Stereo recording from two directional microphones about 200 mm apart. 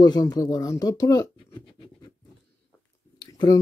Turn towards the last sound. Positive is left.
turn(degrees=20)  # may be behind; listen again after turning